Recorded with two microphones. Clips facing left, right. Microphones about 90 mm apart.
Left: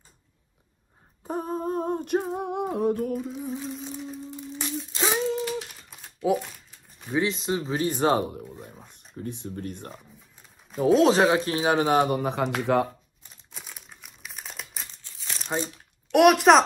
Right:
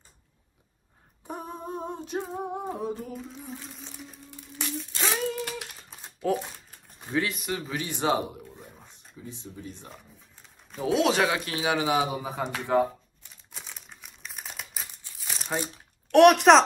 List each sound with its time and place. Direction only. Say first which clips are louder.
1.2 s female singing: left 8 dB; 35° left (ahead or behind); by 3.2 s 60° left (ahead or behind)
3.2 s music: left 8 dB; 10° left (ahead or behind)
3.5 s a sound: left 9 dB; 5° left (ahead or behind)
4.4 s humming: right 1 dB; 25° left (ahead or behind)
4.9 s a sound: left 4 dB; 20° left (ahead or behind)
5.9 s a sound: right 1 dB; 25° right (ahead or behind)
7.1 s speech: left 3 dB; 20° left (ahead or behind)
7.8 s speech: left 4 dB; 40° left (ahead or behind)
8.4 s a sound: left 5 dB; 15° left (ahead or behind)
8.9 s speech: left 9 dB; 60° left (ahead or behind)
10.8 s speech: left 5 dB; 35° left (ahead or behind); by 12.8 s 75° left (ahead or behind)
13.5 s crumpling: even; 5° left (ahead or behind)
16.1 s a child's voice: right 1 dB; centre (ahead or behind)